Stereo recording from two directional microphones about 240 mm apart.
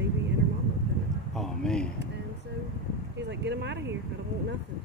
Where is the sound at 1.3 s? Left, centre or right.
Centre.